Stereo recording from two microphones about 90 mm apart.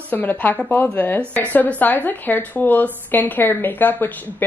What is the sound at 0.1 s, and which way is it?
Speech, 20° left (ahead or behind).